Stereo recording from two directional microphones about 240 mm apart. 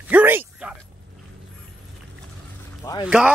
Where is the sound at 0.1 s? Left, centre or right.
Centre.